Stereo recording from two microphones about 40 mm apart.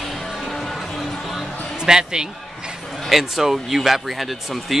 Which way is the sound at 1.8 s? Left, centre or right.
Centre.